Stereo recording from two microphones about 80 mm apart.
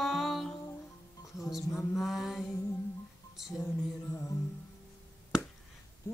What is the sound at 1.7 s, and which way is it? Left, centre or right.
Mantra, left.